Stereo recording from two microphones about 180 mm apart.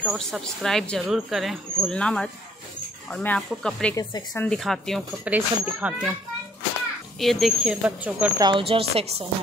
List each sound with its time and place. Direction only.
0.0 s speech: centre (ahead or behind)
7.2 s speech: centre (ahead or behind)
8.4 s speech: 25° right (ahead or behind)